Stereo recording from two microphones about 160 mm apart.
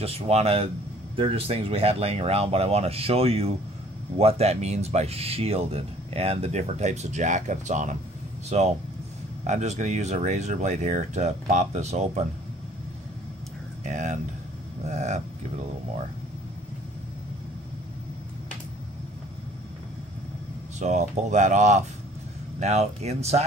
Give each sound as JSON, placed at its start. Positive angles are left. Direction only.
{"t": 0.0, "sound": "speech", "side_deg": -40}
{"t": 13.8, "sound": "speech", "side_deg": -50}
{"t": 20.8, "sound": "speech", "side_deg": -50}